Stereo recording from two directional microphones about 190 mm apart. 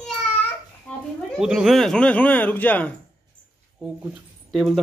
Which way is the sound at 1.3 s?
5° right (ahead or behind).